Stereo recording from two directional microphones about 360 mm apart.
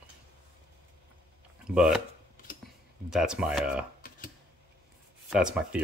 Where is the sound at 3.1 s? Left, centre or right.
Centre.